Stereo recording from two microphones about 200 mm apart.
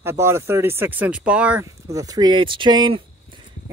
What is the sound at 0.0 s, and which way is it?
Speech, 10° right (ahead or behind).